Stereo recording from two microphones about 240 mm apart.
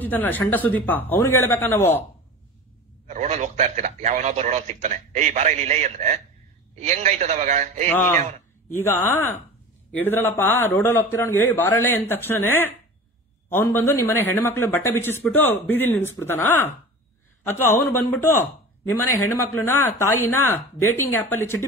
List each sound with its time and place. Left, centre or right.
0.0 s a man's voice: centre
3.1 s a man's voice: right
7.9 s a man's voice: centre
19.0 s a man's voice: centre